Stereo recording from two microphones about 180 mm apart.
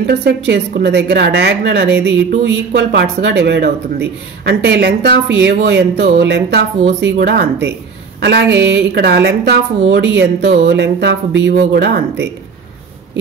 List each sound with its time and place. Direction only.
0.0 s a woman's voice: 65° right (ahead or behind)